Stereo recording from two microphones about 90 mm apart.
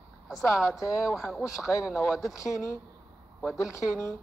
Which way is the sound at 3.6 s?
35° left (ahead or behind).